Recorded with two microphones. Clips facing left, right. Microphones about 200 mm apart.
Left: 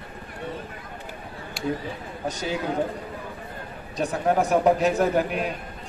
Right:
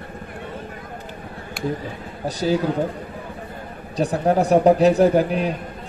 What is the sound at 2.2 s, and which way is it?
Speech, 35° right (ahead or behind).